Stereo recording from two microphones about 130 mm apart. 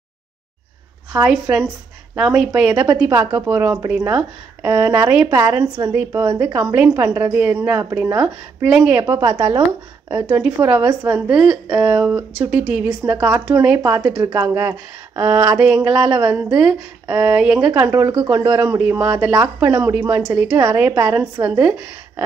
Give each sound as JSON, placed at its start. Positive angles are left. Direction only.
{"t": 1.2, "sound": "speech", "side_deg": -5}
{"t": 3.0, "sound": "a woman's voice", "side_deg": -20}
{"t": 6.5, "sound": "a woman's voice", "side_deg": -15}
{"t": 8.5, "sound": "a woman's voice", "side_deg": -10}
{"t": 9.0, "sound": "speech", "side_deg": -30}
{"t": 10.2, "sound": "a woman's voice", "side_deg": -10}